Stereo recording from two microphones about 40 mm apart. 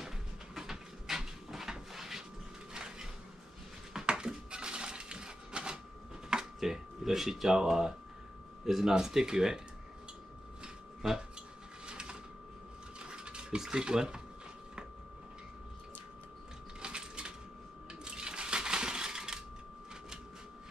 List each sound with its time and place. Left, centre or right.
0.6 s a sound: centre
2.7 s music: centre
4.0 s coin: right
6.6 s speech: centre
11.8 s a sound: right
13.0 s mechanisms: right
13.6 s speech: centre
16.8 s a sound: right
18.0 s coin: right